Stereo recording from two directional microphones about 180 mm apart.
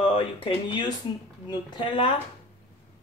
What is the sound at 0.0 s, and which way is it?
A woman's voice, 30° left (ahead or behind).